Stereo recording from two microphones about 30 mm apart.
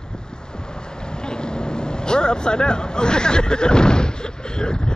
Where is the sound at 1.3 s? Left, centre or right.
Left.